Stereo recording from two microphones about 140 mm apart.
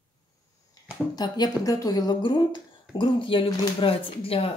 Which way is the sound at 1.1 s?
30° left (ahead or behind).